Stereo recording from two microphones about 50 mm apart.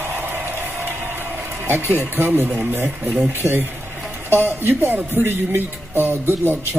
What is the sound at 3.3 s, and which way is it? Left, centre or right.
Speech, right.